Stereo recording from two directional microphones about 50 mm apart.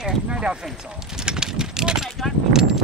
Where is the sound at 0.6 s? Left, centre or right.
Centre.